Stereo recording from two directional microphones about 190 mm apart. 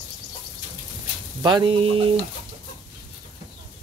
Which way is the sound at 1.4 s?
25° right (ahead or behind).